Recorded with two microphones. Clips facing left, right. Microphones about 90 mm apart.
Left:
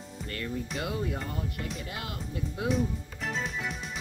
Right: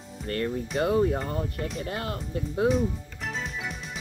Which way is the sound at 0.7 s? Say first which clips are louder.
Right 12 dB; 35° right (ahead or behind).